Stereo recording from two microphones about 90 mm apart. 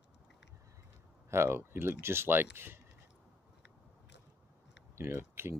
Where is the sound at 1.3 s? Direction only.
30° right (ahead or behind).